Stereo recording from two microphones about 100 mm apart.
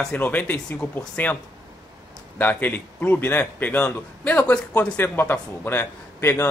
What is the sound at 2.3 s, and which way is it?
Speech, 20° left (ahead or behind).